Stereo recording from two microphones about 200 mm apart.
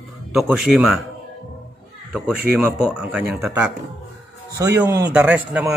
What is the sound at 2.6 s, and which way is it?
Speech, 5° right (ahead or behind).